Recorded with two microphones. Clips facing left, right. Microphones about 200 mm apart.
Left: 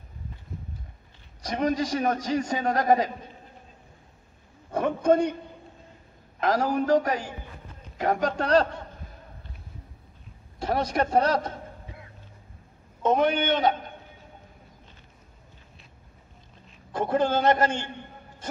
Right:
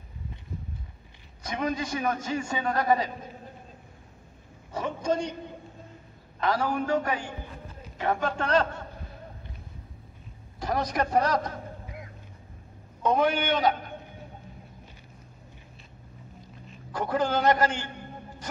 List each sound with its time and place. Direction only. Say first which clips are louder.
1.4 s a man's voice: left 4 dB; 35° left (ahead or behind)
4.6 s a sound: left 6 dB; 55° left (ahead or behind)
6.4 s a man's voice: left 3 dB; 45° left (ahead or behind)
10.6 s a sound: left 2 dB; 30° left (ahead or behind)
13.0 s a man's voice: left 2 dB; 20° left (ahead or behind)
16.9 s a man's voice: left 3 dB; 25° left (ahead or behind)